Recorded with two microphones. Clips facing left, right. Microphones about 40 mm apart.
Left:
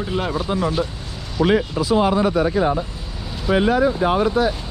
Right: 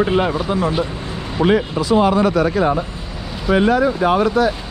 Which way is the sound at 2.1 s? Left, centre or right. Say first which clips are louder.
Right 2 dB; right.